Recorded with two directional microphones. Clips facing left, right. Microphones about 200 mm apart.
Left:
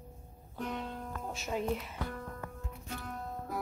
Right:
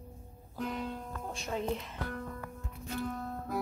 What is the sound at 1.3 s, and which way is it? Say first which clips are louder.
Speech: even; 5° left (ahead or behind).